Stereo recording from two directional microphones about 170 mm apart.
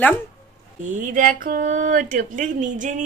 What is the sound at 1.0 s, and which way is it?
Speech, 50° right (ahead or behind).